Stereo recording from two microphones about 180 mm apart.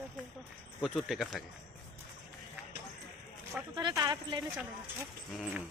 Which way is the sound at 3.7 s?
25° right (ahead or behind).